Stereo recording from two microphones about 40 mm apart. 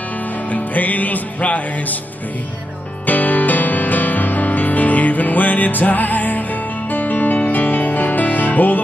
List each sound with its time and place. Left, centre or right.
0.5 s music: left
3.1 s music: left